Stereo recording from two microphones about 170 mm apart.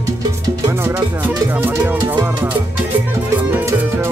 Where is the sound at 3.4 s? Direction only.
10° right (ahead or behind).